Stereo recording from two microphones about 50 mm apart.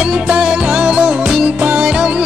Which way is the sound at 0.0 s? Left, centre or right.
Right.